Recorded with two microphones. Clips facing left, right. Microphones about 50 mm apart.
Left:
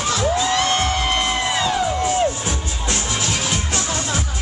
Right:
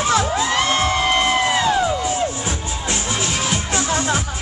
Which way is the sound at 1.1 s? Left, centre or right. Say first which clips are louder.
Right 3 dB; right.